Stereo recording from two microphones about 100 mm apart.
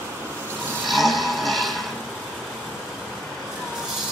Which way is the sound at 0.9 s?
Centre (ahead or behind).